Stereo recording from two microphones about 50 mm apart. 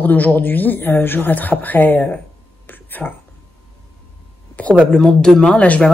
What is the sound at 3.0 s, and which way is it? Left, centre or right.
Speech, centre.